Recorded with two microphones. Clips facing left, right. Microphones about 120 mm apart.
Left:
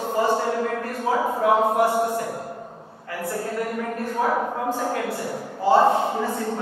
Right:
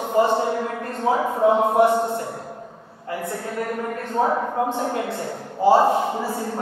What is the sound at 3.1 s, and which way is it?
A man's voice, 20° right (ahead or behind).